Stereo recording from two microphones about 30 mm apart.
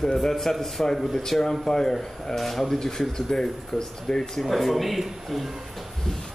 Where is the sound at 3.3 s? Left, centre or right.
Centre.